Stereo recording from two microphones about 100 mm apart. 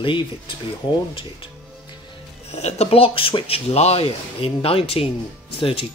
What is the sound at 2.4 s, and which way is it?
Speech, 90° left.